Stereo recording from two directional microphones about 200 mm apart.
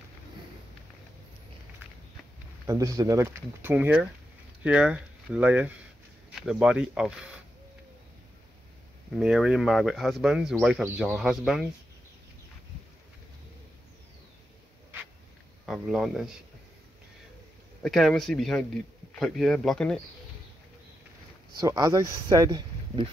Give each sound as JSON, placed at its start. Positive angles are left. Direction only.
{"t": 2.6, "sound": "speech", "side_deg": -15}
{"t": 9.1, "sound": "speech", "side_deg": 0}
{"t": 15.6, "sound": "speech", "side_deg": 0}
{"t": 17.8, "sound": "speech", "side_deg": 0}
{"t": 21.5, "sound": "speech", "side_deg": -15}